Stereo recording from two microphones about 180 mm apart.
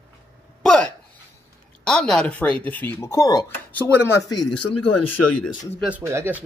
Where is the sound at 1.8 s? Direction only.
5° left (ahead or behind).